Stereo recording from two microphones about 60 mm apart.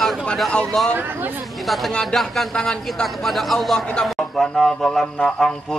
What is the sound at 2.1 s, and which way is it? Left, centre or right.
A man's voice, centre.